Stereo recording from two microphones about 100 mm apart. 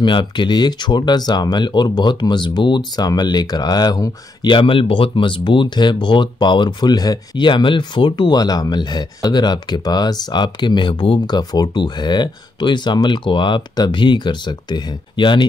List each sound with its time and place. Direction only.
0.0 s speech: 55° left (ahead or behind)